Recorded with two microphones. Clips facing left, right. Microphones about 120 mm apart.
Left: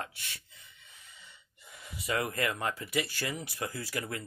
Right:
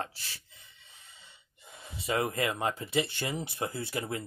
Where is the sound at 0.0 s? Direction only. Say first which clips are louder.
Right 3 dB; 30° right (ahead or behind).